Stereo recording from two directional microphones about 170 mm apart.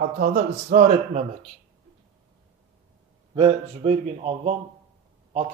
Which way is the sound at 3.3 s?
30° right (ahead or behind).